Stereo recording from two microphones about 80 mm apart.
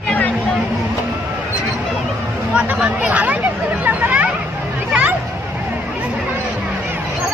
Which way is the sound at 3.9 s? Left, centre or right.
Centre.